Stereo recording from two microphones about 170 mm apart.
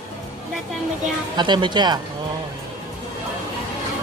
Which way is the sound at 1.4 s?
25° right (ahead or behind).